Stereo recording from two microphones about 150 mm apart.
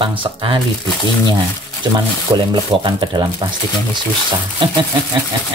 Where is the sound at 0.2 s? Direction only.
35° right (ahead or behind).